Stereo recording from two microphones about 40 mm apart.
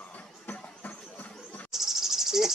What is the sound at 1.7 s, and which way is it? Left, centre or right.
Cricket, centre.